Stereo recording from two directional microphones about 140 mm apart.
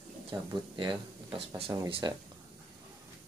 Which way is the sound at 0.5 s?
30° right (ahead or behind).